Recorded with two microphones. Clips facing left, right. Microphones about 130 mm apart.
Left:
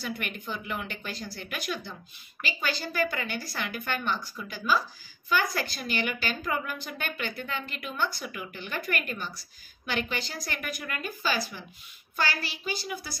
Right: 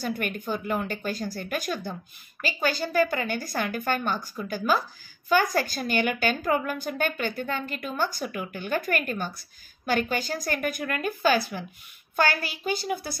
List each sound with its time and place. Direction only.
0.0 s a woman's voice: 45° right (ahead or behind)